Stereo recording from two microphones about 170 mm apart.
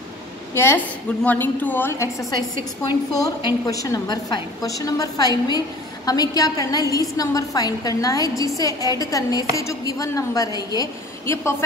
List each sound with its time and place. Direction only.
0.6 s a woman's voice: 10° left (ahead or behind)